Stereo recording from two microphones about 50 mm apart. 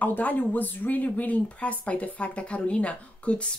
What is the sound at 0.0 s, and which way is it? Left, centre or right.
A woman's voice, left.